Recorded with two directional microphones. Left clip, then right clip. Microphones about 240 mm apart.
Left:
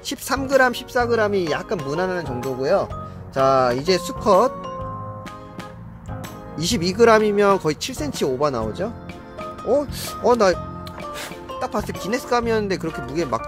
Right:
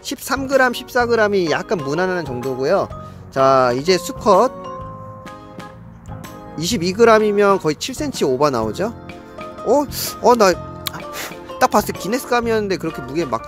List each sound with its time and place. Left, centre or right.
0.0 s speech: centre
6.5 s speech: centre
11.9 s speech: centre